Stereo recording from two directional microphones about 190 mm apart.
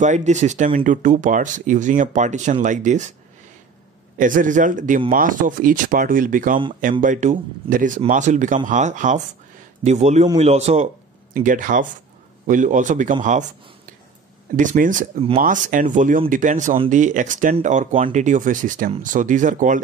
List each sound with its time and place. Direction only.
0.0 s speech: 40° right (ahead or behind)
4.2 s speech: 45° right (ahead or behind)
14.6 s speech: 45° right (ahead or behind)